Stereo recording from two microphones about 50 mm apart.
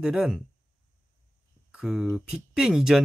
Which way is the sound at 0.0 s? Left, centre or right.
Centre.